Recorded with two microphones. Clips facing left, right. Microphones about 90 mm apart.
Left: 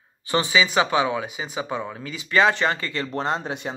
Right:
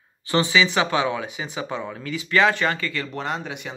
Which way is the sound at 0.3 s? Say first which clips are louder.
Right 1 dB; 20° left (ahead or behind).